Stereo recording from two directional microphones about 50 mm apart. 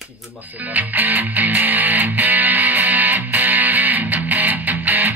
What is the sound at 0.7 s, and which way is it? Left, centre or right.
Music, right.